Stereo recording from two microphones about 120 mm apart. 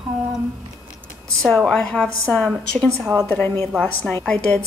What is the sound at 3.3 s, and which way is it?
A woman's voice, 20° left (ahead or behind).